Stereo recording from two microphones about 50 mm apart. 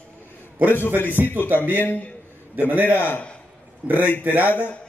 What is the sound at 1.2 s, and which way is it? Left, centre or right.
Speech, right.